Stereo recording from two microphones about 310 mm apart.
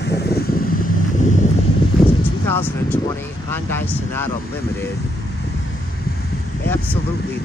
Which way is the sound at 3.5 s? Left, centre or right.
Centre.